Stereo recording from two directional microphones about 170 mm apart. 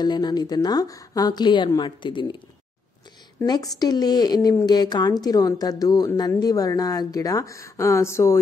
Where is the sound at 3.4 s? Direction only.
20° left (ahead or behind).